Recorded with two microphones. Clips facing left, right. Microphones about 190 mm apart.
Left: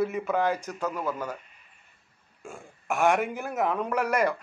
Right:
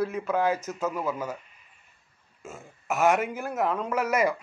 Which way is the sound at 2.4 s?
5° right (ahead or behind).